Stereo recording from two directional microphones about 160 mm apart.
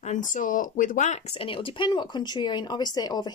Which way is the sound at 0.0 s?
50° left (ahead or behind).